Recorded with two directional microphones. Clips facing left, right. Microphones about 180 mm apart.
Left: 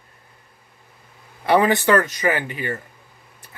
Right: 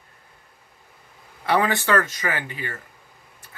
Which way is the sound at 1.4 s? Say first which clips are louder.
Left 5 dB; 15° left (ahead or behind).